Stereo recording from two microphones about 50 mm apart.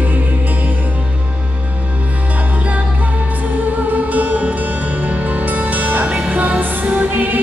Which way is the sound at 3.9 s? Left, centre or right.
Right.